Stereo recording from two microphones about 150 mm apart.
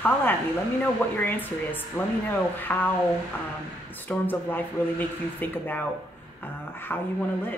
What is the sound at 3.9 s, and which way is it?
Speech, 10° left (ahead or behind).